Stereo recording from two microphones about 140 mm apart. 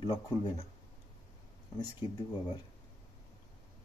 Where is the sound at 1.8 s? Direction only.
30° left (ahead or behind).